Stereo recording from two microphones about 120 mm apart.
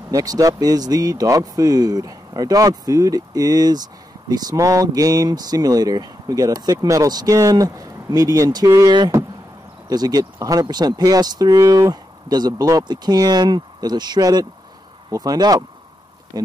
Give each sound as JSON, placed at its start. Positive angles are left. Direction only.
{"t": 0.1, "sound": "speech", "side_deg": -30}